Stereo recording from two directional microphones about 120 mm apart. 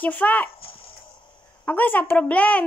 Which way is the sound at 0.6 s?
50° left (ahead or behind).